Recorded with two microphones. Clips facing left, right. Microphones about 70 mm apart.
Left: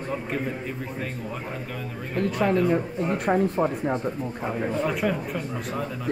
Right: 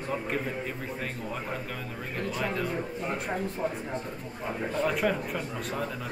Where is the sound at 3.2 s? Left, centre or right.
Left.